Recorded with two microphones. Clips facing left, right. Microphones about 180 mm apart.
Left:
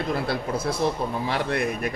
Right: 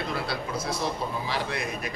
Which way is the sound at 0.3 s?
55° left (ahead or behind).